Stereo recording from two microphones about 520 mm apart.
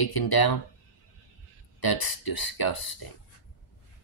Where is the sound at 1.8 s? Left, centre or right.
Left.